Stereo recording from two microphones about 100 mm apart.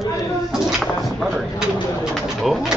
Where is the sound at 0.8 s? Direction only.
Centre (ahead or behind).